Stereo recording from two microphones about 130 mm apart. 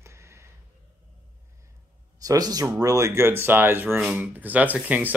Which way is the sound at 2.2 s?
30° right (ahead or behind).